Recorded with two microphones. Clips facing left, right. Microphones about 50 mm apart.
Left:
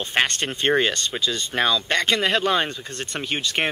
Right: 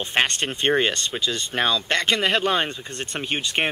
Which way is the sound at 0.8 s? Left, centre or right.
Right.